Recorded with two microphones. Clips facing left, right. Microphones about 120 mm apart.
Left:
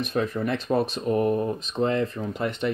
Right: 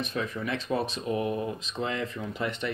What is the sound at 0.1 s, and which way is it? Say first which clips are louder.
Speech: left 6 dB; 55° left (ahead or behind).